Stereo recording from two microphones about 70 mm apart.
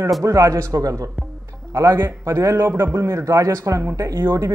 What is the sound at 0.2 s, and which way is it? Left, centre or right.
Speech, right.